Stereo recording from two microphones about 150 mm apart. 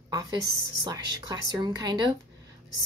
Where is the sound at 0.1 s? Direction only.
25° right (ahead or behind).